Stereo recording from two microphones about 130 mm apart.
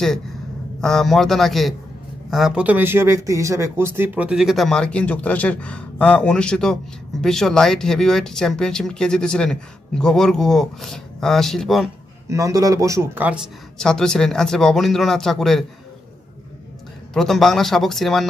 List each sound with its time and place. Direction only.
0.7 s speech: 5° left (ahead or behind)
12.3 s speech: 25° right (ahead or behind)
13.7 s speech: 5° left (ahead or behind)
17.1 s speech: 5° left (ahead or behind)